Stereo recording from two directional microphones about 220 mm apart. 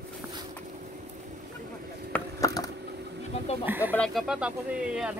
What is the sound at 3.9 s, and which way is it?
Speech, centre (ahead or behind).